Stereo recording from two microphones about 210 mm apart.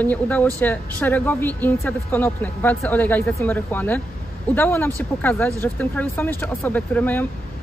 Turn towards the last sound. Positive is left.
turn(degrees=10)  # may be behind; listen again after turning